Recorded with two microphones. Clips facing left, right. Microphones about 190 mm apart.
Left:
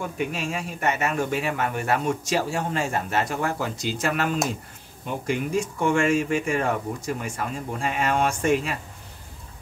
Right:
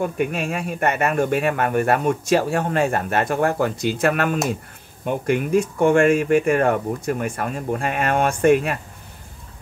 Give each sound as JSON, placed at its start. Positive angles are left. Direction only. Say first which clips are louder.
{"t": 0.0, "sound": "speech", "louder": "right 6 dB", "side_deg": -55}